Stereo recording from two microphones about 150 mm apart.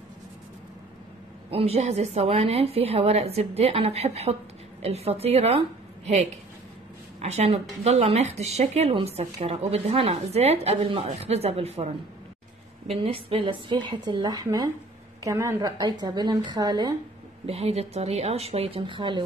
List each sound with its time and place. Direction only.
1.5 s a woman's voice: 40° right (ahead or behind)
17.5 s a woman's voice: 40° right (ahead or behind)